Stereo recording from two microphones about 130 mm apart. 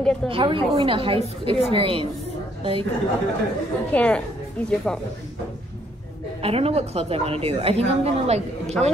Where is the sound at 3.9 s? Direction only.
10° left (ahead or behind).